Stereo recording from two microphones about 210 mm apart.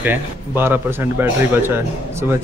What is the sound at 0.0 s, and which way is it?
A man's voice, 10° right (ahead or behind).